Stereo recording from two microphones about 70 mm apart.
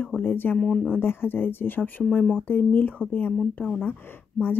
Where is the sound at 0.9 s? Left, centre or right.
Left.